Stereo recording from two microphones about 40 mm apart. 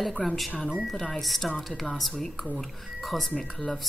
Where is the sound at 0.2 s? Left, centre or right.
Left.